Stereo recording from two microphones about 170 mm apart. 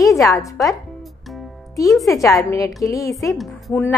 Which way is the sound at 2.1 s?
20° left (ahead or behind).